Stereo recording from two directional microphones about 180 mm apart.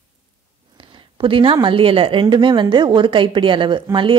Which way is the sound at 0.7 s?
30° right (ahead or behind).